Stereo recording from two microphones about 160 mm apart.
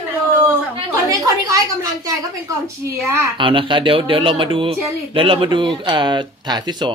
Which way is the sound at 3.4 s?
30° right (ahead or behind).